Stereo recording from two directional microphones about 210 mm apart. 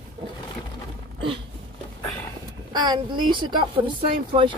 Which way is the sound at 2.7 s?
20° right (ahead or behind).